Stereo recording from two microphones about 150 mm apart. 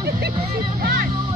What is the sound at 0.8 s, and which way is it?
Music, 75° right (ahead or behind).